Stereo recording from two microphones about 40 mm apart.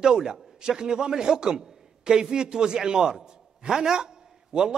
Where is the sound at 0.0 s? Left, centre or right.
Centre.